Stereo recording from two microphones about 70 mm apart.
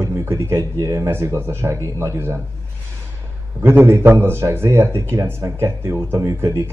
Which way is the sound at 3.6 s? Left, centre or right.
Right.